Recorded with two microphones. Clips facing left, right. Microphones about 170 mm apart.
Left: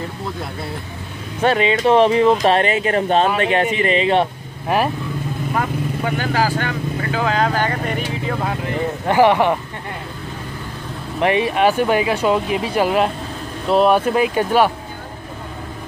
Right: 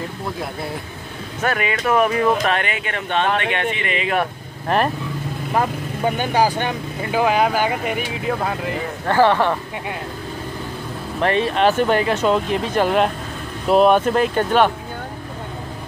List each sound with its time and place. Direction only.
1.4 s speech: 25° left (ahead or behind)
4.6 s speech: 5° left (ahead or behind)
5.6 s speech: 25° right (ahead or behind); by 8.7 s centre (ahead or behind)
9.0 s speech: 15° left (ahead or behind)
11.1 s speech: 15° left (ahead or behind)